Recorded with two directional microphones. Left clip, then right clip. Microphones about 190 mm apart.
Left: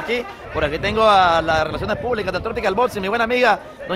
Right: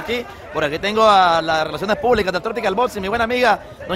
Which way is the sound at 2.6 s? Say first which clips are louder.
Left 1 dB; 5° right (ahead or behind).